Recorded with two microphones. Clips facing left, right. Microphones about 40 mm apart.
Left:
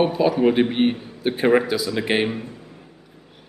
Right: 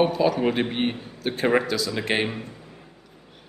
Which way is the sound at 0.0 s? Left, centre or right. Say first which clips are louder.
Left 3 dB; centre.